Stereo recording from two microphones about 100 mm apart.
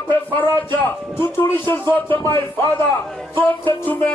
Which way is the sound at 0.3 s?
55° right (ahead or behind).